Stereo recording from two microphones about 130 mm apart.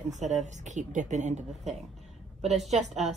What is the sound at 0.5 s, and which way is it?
A woman's voice, 70° right (ahead or behind).